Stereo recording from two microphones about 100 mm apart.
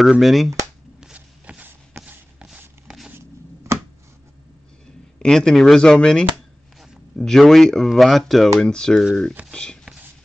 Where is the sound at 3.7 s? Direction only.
25° right (ahead or behind).